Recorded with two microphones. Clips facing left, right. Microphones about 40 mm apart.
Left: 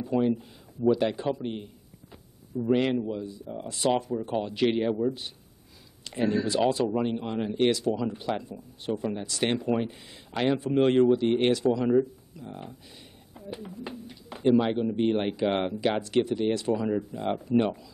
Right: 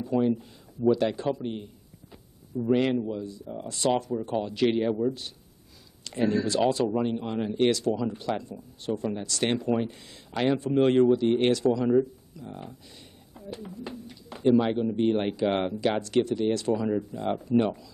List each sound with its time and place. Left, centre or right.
0.0 s speech: centre
5.0 s speech: left
6.2 s speech: centre
7.2 s speech: centre
13.5 s speech: centre